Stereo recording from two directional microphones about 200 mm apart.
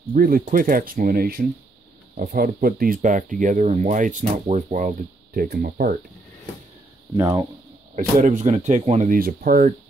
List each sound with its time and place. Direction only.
0.1 s speech: 45° right (ahead or behind)
7.2 s speech: 20° right (ahead or behind)
7.9 s speech: 35° right (ahead or behind)